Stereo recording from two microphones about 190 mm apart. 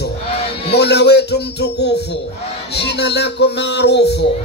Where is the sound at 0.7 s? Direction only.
60° left (ahead or behind).